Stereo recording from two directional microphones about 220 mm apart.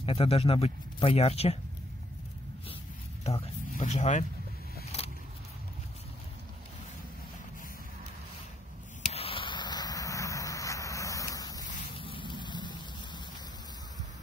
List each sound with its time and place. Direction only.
0.0 s speech: 25° left (ahead or behind)
3.3 s speech: 25° left (ahead or behind)
9.1 s a sound: 25° left (ahead or behind)